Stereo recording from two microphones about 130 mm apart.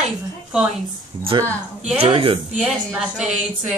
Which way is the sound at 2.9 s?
5° right (ahead or behind).